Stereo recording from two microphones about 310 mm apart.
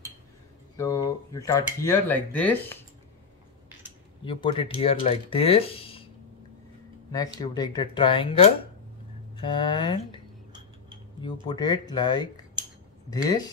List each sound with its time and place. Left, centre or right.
0.7 s speech: centre
4.2 s speech: centre
7.1 s speech: centre
11.4 s speech: centre